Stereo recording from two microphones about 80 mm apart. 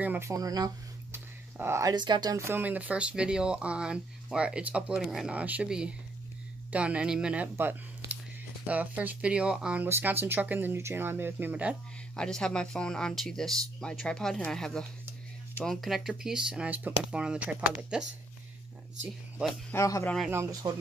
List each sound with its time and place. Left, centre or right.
0.2 s speech: right
1.1 s a sound: right
1.9 s speech: right
2.3 s speech: right
2.6 s speech: centre
5.3 s speech: centre
7.5 s a sound: right
8.6 s speech: centre
9.8 s speech: right
12.2 s speech: centre
19.7 s speech: left
20.6 s speech: right